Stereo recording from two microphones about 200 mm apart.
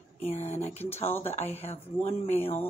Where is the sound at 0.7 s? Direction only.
10° left (ahead or behind).